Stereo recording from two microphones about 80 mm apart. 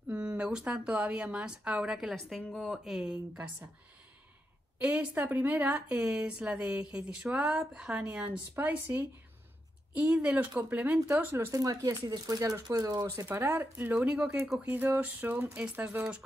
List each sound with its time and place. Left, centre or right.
0.1 s speech: centre
4.7 s speech: right
11.5 s speech: right
13.3 s speech: right